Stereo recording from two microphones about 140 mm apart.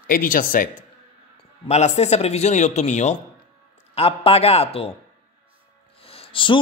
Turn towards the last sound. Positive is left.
turn(degrees=40)  # may be behind; listen again after turning